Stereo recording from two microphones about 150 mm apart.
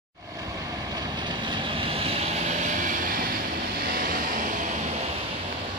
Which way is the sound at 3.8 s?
80° right.